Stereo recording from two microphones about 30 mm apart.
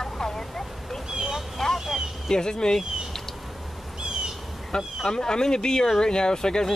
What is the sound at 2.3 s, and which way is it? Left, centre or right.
Speech, left.